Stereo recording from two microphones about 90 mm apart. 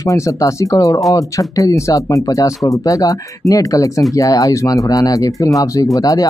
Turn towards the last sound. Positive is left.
turn(degrees=45)  # may be behind; listen again after turning